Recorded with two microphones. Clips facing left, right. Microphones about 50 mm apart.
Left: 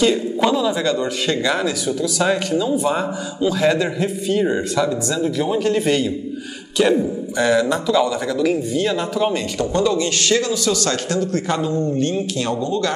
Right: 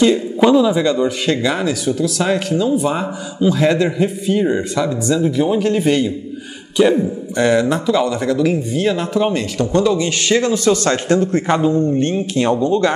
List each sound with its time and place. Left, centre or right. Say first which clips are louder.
0.0 s a man's voice: right 4 dB; centre
10.2 s a man's voice: right 4 dB; centre
10.5 s a man's voice: right 5 dB; right